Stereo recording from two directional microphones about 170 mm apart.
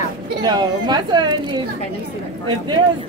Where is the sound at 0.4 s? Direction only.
25° right (ahead or behind).